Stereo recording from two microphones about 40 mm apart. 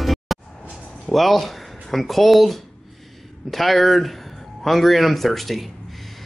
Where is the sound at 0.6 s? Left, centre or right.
Left.